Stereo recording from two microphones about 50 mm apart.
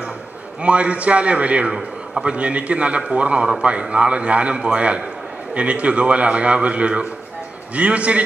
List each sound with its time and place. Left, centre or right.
0.6 s a man's voice: right
1.7 s a man's voice: centre
2.2 s a man's voice: right